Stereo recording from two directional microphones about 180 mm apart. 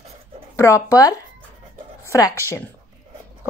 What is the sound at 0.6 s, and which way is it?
Speech, 15° left (ahead or behind).